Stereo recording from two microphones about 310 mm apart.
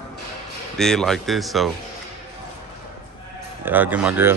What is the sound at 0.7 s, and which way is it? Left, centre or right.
Speech, centre.